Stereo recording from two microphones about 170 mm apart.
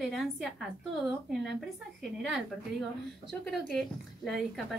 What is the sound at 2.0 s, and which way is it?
A woman's voice, centre (ahead or behind).